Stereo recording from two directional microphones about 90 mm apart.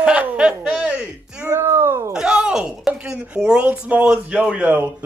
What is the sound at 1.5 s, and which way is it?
Speech, 30° right (ahead or behind).